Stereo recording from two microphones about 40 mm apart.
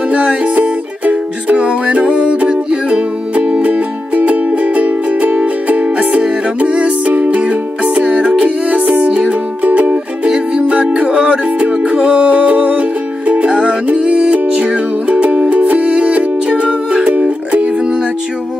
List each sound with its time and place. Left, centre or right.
0.1 s music: right
10.2 s music: right